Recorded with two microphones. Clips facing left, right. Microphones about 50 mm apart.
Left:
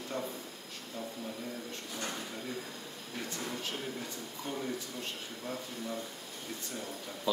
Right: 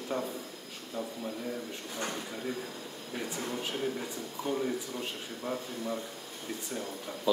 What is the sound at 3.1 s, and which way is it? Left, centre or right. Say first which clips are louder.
Speech: right 3 dB; centre.